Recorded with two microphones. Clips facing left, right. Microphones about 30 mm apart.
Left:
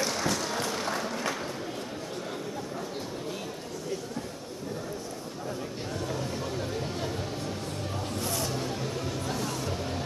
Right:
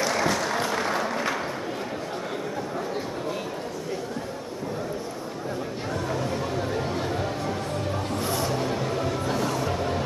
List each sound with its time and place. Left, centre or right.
0.0 s applause: centre
6.0 s a sound: right
9.5 s music: centre